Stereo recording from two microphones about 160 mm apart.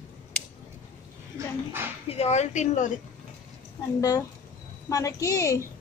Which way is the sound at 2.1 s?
40° left (ahead or behind).